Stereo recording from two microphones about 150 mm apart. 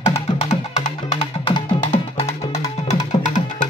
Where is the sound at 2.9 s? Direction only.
55° left (ahead or behind).